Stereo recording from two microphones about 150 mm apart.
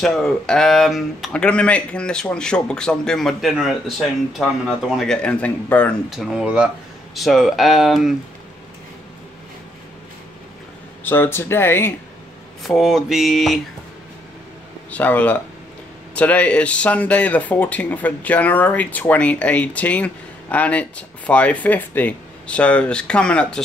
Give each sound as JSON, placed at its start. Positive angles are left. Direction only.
{"t": 0.0, "sound": "speech", "side_deg": 5}
{"t": 6.0, "sound": "speech", "side_deg": 0}
{"t": 11.1, "sound": "speech", "side_deg": 15}
{"t": 12.6, "sound": "speech", "side_deg": 0}
{"t": 14.9, "sound": "speech", "side_deg": 10}